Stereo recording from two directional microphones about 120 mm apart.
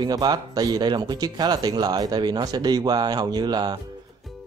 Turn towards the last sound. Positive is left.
turn(degrees=-35)  # may be behind; listen again after turning